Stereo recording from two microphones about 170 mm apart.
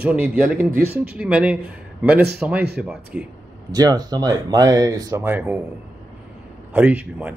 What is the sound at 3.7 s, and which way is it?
Speech, 20° right (ahead or behind).